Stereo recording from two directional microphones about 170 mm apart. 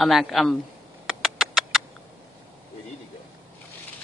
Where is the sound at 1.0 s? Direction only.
Centre (ahead or behind).